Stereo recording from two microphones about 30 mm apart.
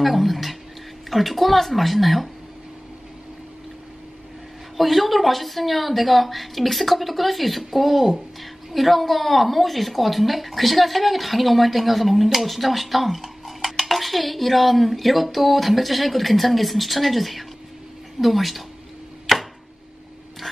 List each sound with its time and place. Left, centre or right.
0.0 s speech: centre
4.7 s speech: centre
19.3 s chopping: centre